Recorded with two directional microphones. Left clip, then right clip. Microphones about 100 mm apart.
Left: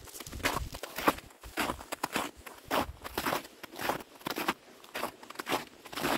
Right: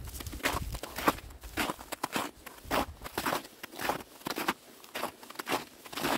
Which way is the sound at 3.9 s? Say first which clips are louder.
Even; 15° left (ahead or behind).